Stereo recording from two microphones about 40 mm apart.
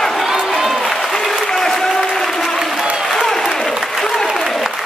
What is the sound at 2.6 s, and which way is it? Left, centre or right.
Applause, centre.